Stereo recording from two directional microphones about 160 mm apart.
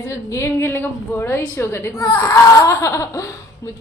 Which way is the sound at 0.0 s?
20° left (ahead or behind).